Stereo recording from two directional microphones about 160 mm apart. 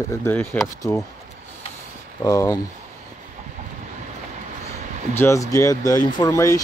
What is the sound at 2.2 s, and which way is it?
Speech, 20° left (ahead or behind).